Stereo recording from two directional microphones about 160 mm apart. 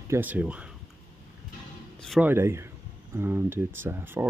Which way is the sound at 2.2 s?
15° right (ahead or behind).